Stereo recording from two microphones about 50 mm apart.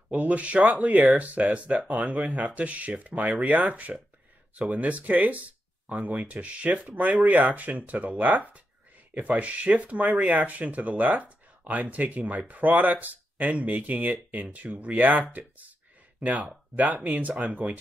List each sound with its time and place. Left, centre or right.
0.1 s speech: right